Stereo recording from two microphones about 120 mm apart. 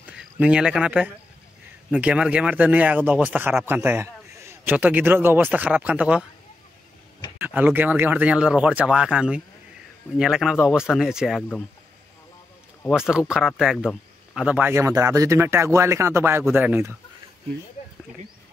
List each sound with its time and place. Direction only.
0.0 s speech: 10° right (ahead or behind)
7.3 s speech: 15° right (ahead or behind)
12.9 s speech: 5° right (ahead or behind)